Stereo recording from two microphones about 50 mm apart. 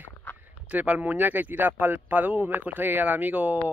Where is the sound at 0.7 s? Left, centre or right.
Right.